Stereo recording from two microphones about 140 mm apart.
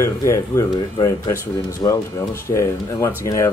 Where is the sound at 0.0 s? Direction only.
20° left (ahead or behind).